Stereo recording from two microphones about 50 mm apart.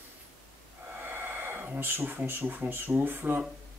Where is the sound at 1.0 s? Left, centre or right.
Right.